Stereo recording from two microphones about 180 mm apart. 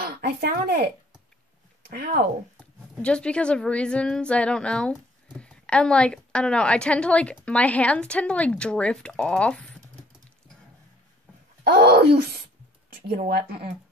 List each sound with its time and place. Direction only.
0.0 s a sound: 55° right (ahead or behind)
1.9 s speech: 55° right (ahead or behind)
2.5 s a woman's voice: 5° left (ahead or behind)
11.6 s speech: 60° right (ahead or behind)